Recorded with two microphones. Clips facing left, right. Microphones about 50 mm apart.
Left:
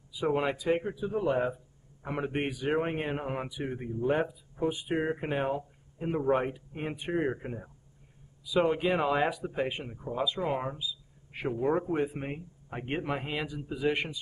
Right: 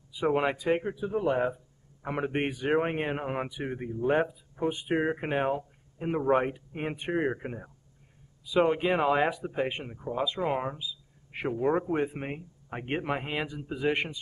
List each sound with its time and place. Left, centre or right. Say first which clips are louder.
0.1 s speech: right 2 dB; right